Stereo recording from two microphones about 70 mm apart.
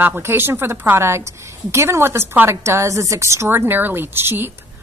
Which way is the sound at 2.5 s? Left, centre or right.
Right.